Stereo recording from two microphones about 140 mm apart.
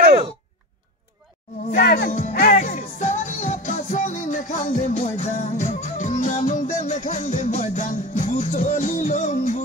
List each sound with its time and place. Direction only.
1.7 s music: 75° left (ahead or behind)